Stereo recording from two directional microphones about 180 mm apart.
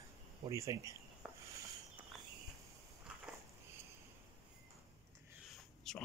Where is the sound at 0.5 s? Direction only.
15° right (ahead or behind).